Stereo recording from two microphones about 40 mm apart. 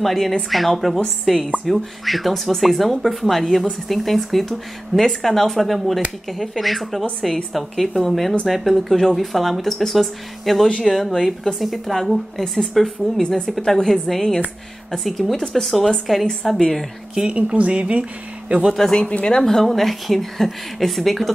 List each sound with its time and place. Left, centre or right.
0.0 s a woman's voice: centre
17.1 s speech: right
18.8 s a woman's voice: centre
19.6 s a woman's voice: centre